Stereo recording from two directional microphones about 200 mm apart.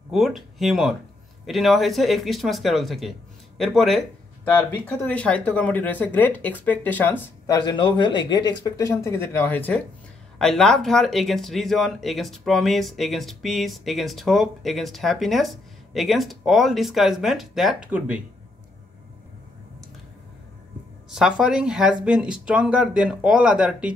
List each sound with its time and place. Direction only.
0.1 s speech: centre (ahead or behind)
7.5 s speech: 25° left (ahead or behind); by 18.2 s 5° right (ahead or behind)
21.1 s speech: 5° right (ahead or behind)